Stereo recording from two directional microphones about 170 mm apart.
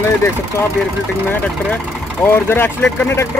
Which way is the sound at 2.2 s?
15° left (ahead or behind).